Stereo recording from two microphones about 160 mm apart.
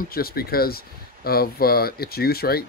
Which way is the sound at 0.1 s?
70° left (ahead or behind).